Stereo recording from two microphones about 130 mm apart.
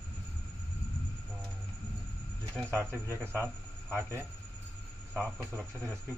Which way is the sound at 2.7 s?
20° right (ahead or behind).